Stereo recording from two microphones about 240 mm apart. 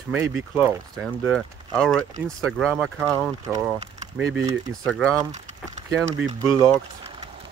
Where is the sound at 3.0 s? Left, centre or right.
Centre.